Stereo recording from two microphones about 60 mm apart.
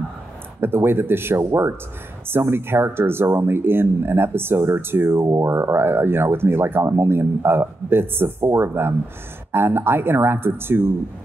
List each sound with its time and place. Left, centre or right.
0.6 s speech: right
5.6 s speech: right